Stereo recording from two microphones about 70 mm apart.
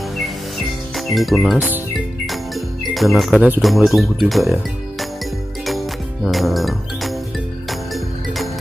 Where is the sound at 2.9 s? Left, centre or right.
Centre.